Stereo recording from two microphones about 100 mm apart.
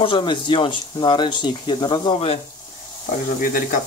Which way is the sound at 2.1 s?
75° left (ahead or behind).